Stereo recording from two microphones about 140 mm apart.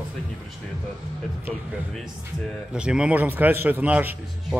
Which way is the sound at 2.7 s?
5° right (ahead or behind).